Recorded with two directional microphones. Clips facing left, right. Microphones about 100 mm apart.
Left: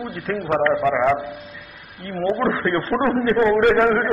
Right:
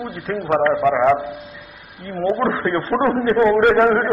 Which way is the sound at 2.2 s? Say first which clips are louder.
Right 1 dB; 5° right (ahead or behind).